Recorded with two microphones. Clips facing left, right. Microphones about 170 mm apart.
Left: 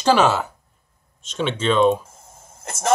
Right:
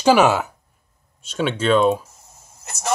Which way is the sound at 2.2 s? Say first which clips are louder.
Left 5 dB; 50° left (ahead or behind).